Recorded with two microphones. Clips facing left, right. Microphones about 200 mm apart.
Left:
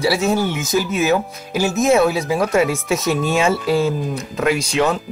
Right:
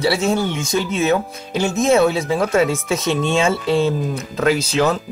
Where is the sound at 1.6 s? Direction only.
Centre (ahead or behind).